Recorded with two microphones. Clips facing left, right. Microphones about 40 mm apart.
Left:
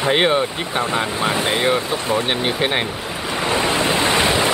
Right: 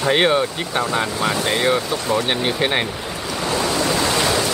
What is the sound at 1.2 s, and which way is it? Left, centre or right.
Speech, left.